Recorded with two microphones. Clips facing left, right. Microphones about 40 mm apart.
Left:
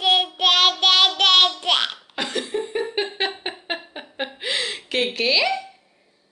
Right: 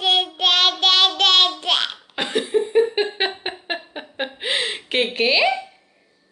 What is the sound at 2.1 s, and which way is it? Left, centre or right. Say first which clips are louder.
Cough: right 6 dB; right.